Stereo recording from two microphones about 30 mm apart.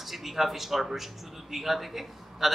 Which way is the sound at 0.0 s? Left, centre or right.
Centre.